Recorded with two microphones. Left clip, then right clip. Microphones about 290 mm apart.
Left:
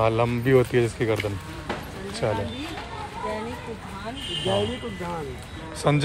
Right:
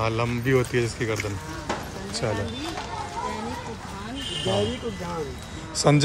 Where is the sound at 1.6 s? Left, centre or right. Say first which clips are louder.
Right 1 dB; centre.